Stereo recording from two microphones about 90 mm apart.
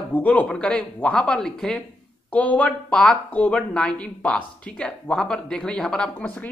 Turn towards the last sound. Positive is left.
turn(degrees=15)  # may be behind; listen again after turning